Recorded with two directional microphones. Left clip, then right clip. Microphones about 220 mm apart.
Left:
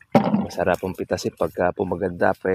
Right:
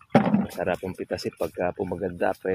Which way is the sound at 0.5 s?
35° left (ahead or behind).